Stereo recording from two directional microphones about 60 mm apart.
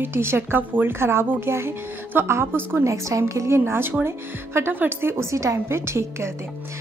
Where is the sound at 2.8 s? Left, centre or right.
Right.